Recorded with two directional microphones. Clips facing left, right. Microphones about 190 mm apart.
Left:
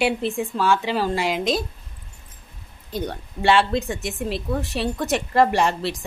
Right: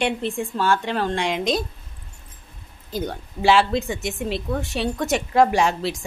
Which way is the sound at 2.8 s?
Centre (ahead or behind).